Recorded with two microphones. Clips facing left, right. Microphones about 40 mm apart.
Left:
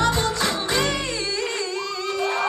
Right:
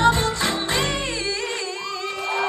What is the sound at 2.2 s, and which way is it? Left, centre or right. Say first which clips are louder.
Crowd: left 1 dB; right.